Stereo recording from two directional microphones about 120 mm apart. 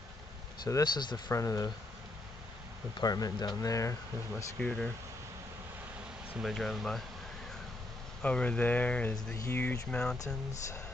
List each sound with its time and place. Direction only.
0.7 s speech: 35° left (ahead or behind)
3.0 s speech: 30° left (ahead or behind)
4.6 s speech: 5° left (ahead or behind)
6.4 s speech: centre (ahead or behind)
8.2 s speech: 10° left (ahead or behind)